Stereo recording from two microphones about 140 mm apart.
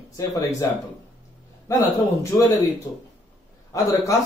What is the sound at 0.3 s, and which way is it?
Speech, 25° left (ahead or behind).